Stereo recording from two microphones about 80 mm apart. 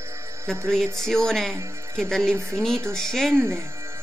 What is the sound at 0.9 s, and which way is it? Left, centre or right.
Speech, centre.